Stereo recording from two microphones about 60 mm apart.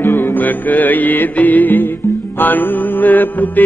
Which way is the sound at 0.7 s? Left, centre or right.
Left.